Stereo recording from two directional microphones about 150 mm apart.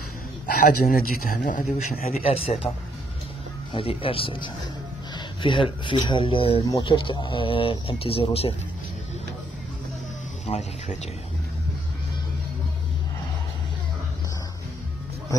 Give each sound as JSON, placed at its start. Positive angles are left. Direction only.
{"t": 0.6, "sound": "speech", "side_deg": 75}
{"t": 3.7, "sound": "speech", "side_deg": 35}
{"t": 10.4, "sound": "speech", "side_deg": 50}